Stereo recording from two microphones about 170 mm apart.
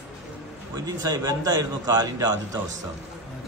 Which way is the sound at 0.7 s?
20° right (ahead or behind).